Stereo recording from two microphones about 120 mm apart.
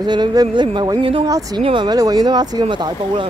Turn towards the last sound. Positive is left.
turn(degrees=-40)  # may be behind; listen again after turning